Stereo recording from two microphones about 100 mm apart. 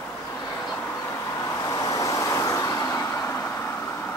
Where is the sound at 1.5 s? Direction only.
35° left (ahead or behind).